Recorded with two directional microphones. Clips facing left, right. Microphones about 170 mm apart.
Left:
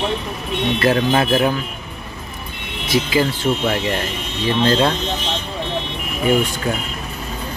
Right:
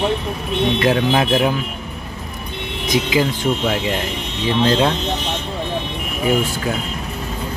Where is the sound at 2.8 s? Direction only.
15° right (ahead or behind).